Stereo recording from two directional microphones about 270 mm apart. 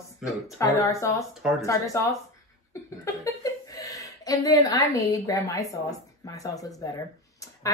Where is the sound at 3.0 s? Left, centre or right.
Centre.